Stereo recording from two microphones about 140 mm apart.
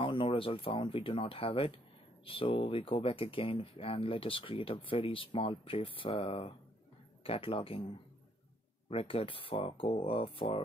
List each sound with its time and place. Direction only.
0.0 s speech: 40° left (ahead or behind)
8.9 s speech: 40° left (ahead or behind)